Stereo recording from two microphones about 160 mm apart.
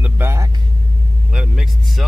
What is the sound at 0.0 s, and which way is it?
Vehicle, 15° right (ahead or behind).